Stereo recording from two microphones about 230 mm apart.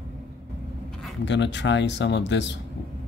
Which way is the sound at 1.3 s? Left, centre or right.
Left.